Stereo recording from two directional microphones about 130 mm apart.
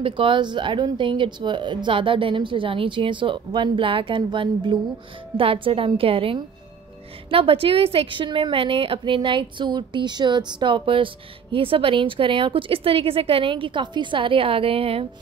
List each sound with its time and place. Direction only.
0.0 s a woman's voice: 40° right (ahead or behind)